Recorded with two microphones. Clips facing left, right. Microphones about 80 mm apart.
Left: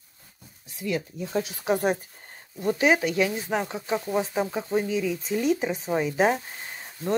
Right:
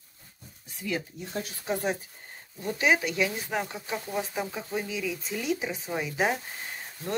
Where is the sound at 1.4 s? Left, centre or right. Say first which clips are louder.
Left 5 dB; left.